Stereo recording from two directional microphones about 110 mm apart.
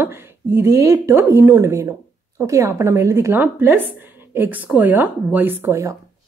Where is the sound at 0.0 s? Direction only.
20° right (ahead or behind).